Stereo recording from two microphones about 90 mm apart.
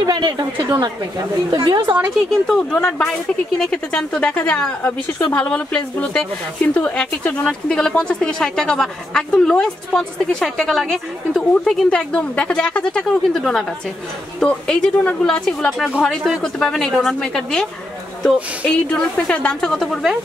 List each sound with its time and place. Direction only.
0.0 s a woman's voice: 50° right (ahead or behind)
2.4 s a woman's voice: centre (ahead or behind)
18.9 s speech: 10° left (ahead or behind)